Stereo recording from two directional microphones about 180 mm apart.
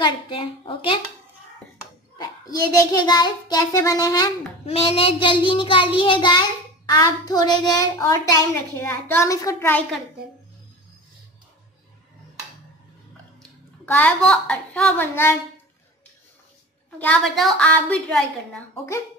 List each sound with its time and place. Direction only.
0.0 s a woman's voice: 30° left (ahead or behind)
2.1 s a child's voice: 20° left (ahead or behind)
4.6 s a child's voice: 30° left (ahead or behind); by 9.8 s 15° left (ahead or behind)
13.8 s a woman's voice: 10° left (ahead or behind)
17.0 s a woman's voice: 5° left (ahead or behind)